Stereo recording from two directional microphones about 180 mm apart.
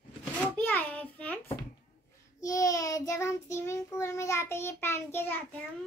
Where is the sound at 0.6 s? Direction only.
10° left (ahead or behind).